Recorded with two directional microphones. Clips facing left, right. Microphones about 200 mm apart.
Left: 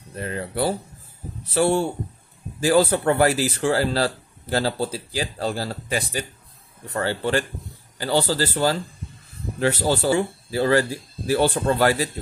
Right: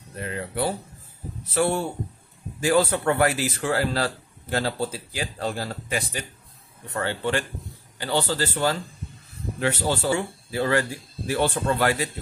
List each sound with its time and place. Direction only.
0.2 s speech: 35° left (ahead or behind)